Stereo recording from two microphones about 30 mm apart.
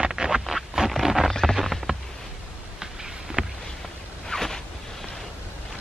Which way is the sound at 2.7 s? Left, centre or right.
Centre.